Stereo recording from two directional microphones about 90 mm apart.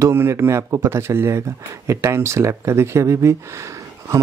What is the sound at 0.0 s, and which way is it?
Speech, 30° right (ahead or behind).